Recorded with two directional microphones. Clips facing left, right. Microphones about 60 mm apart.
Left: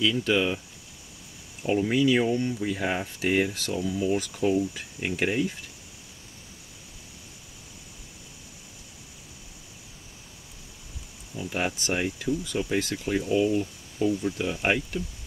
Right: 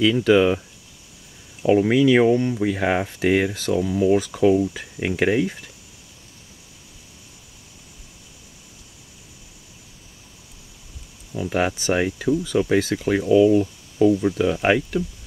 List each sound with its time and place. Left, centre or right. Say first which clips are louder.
0.0 s speech: right 8 dB; right
1.9 s speech: right 5 dB; right
11.5 s speech: right 7 dB; right